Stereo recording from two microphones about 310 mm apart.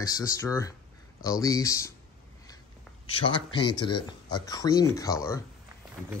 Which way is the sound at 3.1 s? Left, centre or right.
Centre.